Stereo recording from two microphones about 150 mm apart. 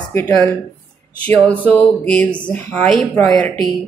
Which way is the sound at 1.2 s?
10° left (ahead or behind).